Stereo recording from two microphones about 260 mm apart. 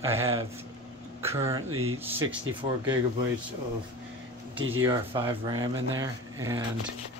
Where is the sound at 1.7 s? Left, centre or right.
Right.